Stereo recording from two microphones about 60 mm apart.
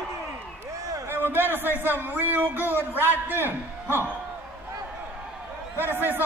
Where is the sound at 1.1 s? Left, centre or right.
Right.